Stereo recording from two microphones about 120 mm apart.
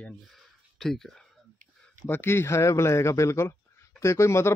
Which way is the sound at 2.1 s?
20° left (ahead or behind).